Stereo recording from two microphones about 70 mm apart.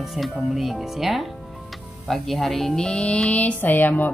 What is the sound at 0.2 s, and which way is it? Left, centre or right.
A woman's voice, centre.